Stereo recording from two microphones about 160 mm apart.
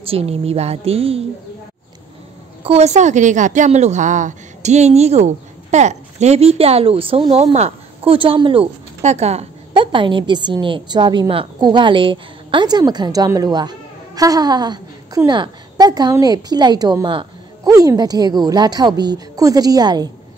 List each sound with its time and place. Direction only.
0.0 s a woman's voice: 35° right (ahead or behind)
2.6 s a woman's voice: 40° right (ahead or behind); by 20.1 s 25° right (ahead or behind)